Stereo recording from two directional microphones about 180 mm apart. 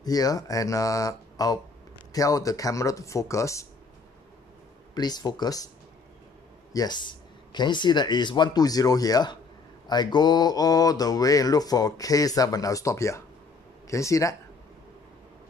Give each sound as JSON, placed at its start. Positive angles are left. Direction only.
{"t": 0.0, "sound": "mantra", "side_deg": 20}
{"t": 2.1, "sound": "speech", "side_deg": 20}
{"t": 4.9, "sound": "mantra", "side_deg": 20}
{"t": 6.7, "sound": "mantra", "side_deg": 20}
{"t": 13.8, "sound": "speech", "side_deg": 15}